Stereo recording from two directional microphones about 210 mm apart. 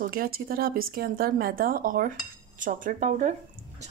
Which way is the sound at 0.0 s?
45° right (ahead or behind).